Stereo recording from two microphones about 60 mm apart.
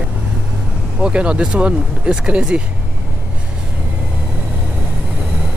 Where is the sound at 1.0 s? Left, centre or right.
Centre.